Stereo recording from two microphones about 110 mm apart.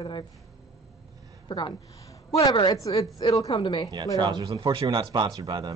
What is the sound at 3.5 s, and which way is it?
Speech, 45° left (ahead or behind).